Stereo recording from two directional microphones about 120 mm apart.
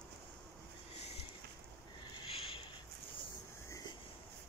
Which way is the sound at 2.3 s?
50° left (ahead or behind).